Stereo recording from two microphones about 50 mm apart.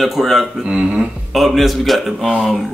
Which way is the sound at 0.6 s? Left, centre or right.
Centre.